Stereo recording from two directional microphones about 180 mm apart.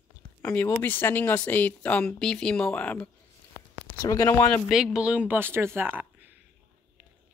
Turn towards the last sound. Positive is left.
turn(degrees=-10)  # may be behind; listen again after turning